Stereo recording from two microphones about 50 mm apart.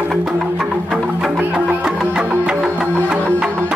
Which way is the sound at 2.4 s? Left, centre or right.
Centre.